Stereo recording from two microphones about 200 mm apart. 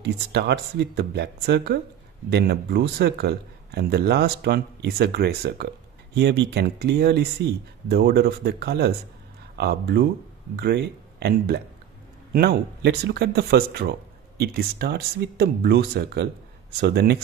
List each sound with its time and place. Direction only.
0.0 s speech: 55° right (ahead or behind)